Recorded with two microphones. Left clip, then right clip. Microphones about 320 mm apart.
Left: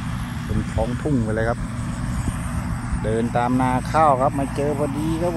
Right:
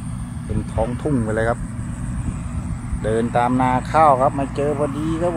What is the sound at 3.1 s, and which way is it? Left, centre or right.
Speech, centre.